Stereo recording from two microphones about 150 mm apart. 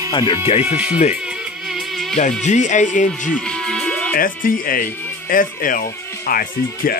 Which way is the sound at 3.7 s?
5° left (ahead or behind).